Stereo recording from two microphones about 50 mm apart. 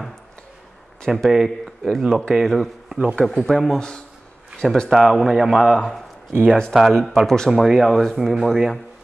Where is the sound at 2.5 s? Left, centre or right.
Centre.